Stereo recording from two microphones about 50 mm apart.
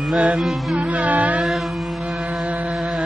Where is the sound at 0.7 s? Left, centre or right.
Right.